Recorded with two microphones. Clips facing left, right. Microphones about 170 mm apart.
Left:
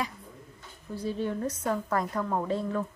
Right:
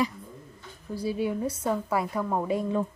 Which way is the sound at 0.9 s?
10° right (ahead or behind).